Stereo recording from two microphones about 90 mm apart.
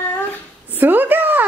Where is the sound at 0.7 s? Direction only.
20° right (ahead or behind).